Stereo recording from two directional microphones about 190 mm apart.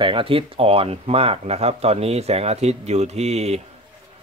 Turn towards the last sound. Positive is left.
turn(degrees=-35)  # may be behind; listen again after turning